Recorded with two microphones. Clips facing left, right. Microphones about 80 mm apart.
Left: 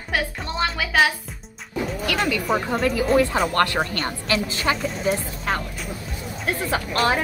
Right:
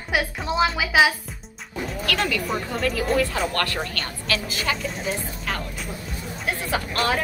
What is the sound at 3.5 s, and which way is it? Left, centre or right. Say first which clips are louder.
A woman's voice: left 5 dB; left.